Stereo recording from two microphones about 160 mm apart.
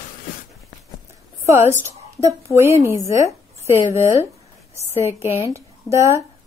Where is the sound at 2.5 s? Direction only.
15° right (ahead or behind).